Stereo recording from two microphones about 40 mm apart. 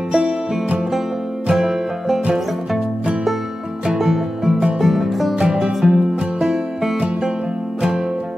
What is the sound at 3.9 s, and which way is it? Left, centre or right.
Music, centre.